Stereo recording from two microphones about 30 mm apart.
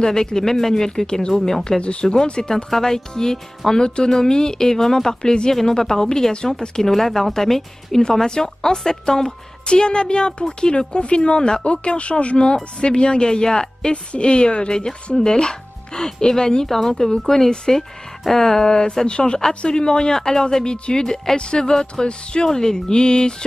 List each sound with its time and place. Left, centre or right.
0.0 s speech: left
1.8 s speech: left
2.2 s speech: left
2.5 s speech: centre
6.8 s a woman's voice: centre; by 13.9 s left
14.1 s speech: left
14.7 s speech: left
16.6 s a woman's voice: centre
20.6 s speech: left
21.0 s speech: left
22.0 s speech: left
22.5 s speech: centre